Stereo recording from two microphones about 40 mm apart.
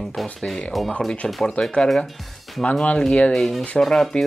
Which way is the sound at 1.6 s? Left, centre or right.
Left.